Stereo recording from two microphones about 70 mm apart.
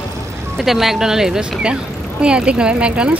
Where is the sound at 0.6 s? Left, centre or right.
Centre.